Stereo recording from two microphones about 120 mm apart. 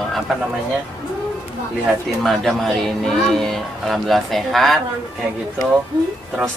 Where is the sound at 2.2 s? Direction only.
Centre (ahead or behind).